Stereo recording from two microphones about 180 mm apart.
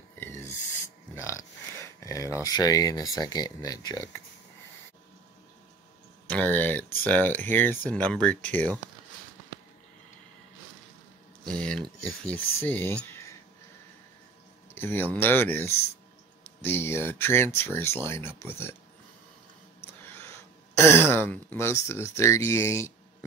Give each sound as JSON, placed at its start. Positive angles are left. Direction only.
{"t": 0.2, "sound": "owl", "side_deg": 15}
{"t": 1.1, "sound": "a sound", "side_deg": 15}
{"t": 2.4, "sound": "speech", "side_deg": 20}
{"t": 6.2, "sound": "speech", "side_deg": 10}
{"t": 11.4, "sound": "speech", "side_deg": 5}
{"t": 14.7, "sound": "speech", "side_deg": 10}
{"t": 19.8, "sound": "speech", "side_deg": 15}